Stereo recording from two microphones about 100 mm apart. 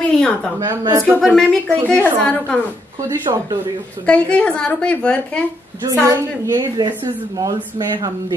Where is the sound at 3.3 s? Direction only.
45° right (ahead or behind).